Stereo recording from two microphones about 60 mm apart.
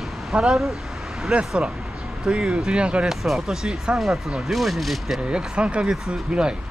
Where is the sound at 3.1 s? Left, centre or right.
Centre.